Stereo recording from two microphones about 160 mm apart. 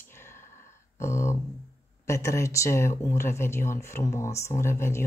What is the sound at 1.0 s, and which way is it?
Speech, 15° left (ahead or behind).